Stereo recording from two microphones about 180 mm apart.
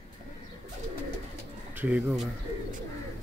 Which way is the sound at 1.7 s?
10° right (ahead or behind).